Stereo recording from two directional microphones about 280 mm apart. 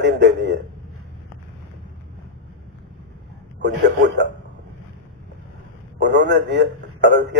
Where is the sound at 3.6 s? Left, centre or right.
Right.